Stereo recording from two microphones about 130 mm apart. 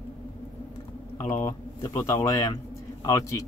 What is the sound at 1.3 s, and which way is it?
Speech, 20° left (ahead or behind).